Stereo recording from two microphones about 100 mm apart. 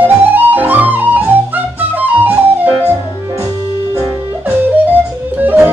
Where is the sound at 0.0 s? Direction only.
20° right (ahead or behind).